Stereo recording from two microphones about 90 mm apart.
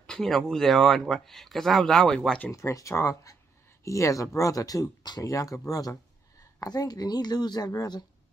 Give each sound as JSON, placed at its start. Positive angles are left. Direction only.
{"t": 0.0, "sound": "a sound", "side_deg": 5}
{"t": 0.5, "sound": "speech", "side_deg": 0}
{"t": 2.5, "sound": "speech", "side_deg": 35}